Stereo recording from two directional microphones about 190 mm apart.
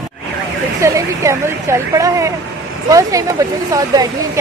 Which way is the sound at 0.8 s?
15° right (ahead or behind).